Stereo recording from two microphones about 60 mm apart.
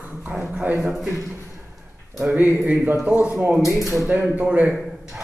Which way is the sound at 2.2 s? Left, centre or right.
Right.